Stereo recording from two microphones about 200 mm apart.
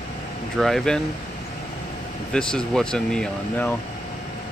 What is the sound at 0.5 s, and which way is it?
Speech, centre (ahead or behind).